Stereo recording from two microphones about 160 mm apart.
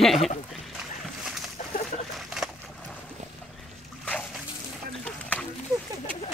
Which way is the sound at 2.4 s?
Centre (ahead or behind).